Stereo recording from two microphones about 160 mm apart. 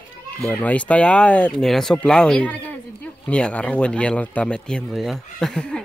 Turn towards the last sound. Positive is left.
turn(degrees=5)  # may be behind; listen again after turning